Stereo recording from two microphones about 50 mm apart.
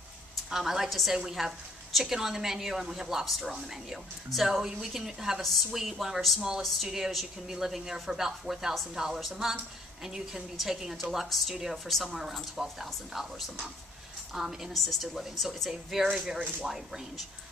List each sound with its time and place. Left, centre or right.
0.5 s a woman's voice: centre
14.3 s a woman's voice: centre
16.1 s a woman's voice: centre